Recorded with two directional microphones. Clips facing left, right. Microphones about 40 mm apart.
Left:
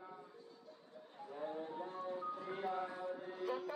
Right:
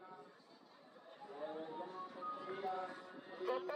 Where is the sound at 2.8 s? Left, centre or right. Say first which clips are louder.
Left 5 dB; left.